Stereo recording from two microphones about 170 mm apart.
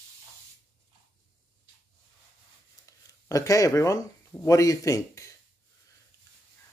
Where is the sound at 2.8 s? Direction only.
20° left (ahead or behind).